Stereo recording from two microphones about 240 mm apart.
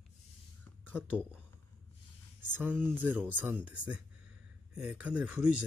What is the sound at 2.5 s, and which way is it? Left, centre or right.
Speech, centre.